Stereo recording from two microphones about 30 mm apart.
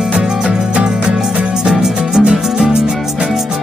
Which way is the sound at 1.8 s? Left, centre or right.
Right.